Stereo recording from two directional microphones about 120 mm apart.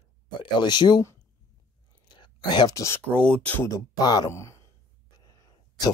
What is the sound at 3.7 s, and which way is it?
Speech, 30° left (ahead or behind).